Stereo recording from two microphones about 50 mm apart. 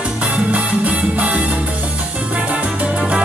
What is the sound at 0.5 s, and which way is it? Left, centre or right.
Salsa music, right.